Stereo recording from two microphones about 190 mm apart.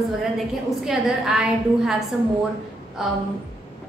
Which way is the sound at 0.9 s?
Centre (ahead or behind).